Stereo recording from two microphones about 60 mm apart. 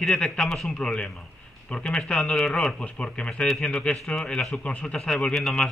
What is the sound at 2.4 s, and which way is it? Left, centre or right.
Speech, centre.